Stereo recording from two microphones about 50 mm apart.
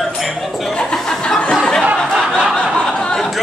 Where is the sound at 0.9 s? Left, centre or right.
Centre.